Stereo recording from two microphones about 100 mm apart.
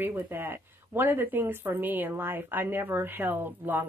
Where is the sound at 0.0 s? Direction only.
20° right (ahead or behind).